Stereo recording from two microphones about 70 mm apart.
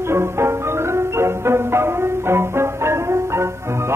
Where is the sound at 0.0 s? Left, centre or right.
Right.